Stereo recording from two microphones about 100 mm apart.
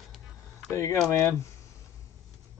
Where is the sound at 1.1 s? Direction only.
30° left (ahead or behind).